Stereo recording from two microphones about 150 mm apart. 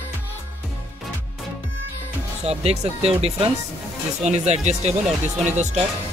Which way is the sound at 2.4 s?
45° right (ahead or behind).